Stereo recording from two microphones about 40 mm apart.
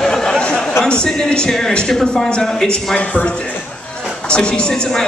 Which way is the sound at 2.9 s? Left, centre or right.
Left.